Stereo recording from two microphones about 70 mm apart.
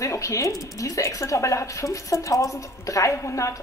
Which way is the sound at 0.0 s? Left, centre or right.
Left.